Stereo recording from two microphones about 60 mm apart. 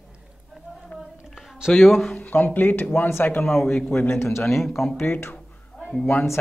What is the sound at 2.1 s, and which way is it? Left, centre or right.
Speech, left.